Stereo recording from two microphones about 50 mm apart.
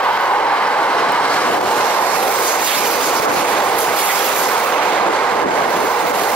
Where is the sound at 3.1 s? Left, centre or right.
Left.